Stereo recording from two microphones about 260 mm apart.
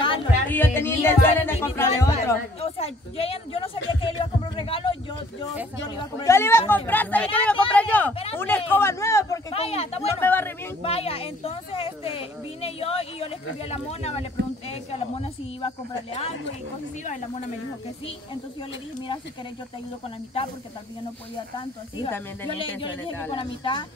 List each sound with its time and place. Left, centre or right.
0.0 s music: centre
0.5 s speech: centre
2.6 s a woman's voice: left
5.9 s speech: centre
7.4 s a sound: centre
8.1 s a sound: left
8.4 s speech: centre
9.5 s speech: left
10.2 s speech: centre
10.8 s a woman's voice: left
22.1 s speech: centre
22.6 s a woman's voice: centre